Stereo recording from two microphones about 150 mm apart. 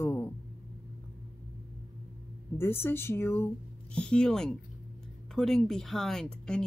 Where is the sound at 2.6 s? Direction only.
15° left (ahead or behind).